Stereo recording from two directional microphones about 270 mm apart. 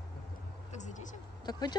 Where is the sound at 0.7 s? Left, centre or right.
Left.